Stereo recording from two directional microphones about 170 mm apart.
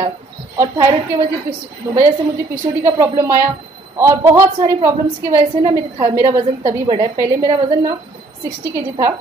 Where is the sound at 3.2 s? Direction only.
15° right (ahead or behind).